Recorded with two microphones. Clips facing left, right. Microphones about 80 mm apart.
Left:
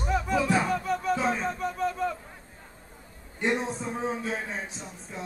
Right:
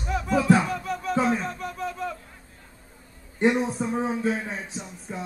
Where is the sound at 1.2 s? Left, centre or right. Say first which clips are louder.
Right 2 dB; centre.